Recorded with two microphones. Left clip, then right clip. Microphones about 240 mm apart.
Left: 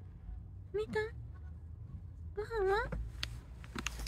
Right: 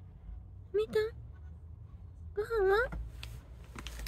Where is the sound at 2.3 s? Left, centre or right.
Right.